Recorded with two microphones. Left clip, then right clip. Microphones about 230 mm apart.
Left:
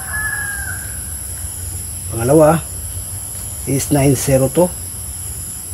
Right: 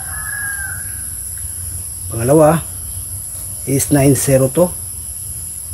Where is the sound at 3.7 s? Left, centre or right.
Right.